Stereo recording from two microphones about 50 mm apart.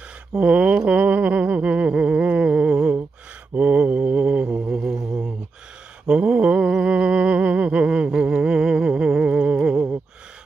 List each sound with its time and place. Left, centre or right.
0.4 s a sound: right
1.9 s humming: centre
3.5 s mantra: right
6.8 s humming: right